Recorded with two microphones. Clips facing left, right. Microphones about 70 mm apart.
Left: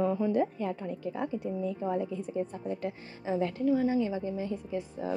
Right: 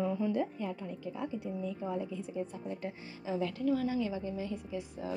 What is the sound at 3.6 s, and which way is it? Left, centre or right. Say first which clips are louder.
A woman's voice: left 5 dB; left.